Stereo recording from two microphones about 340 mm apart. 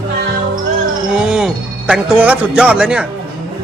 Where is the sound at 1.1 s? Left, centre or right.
Centre.